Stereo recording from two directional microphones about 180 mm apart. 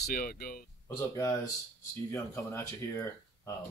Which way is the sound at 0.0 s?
55° left (ahead or behind).